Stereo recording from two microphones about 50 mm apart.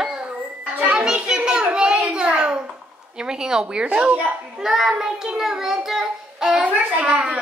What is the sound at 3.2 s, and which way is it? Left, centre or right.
A child's voice, centre.